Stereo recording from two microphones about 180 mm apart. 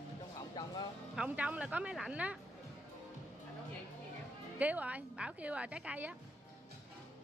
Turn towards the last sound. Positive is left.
turn(degrees=-10)  # may be behind; listen again after turning